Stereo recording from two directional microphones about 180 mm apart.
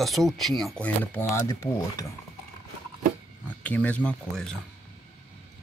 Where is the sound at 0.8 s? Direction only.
10° left (ahead or behind).